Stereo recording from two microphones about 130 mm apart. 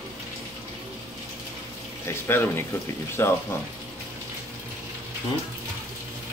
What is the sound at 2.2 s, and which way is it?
Speech, 15° left (ahead or behind).